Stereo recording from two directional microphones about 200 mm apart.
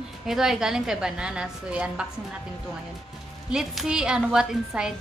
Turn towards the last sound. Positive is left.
turn(degrees=-5)  # may be behind; listen again after turning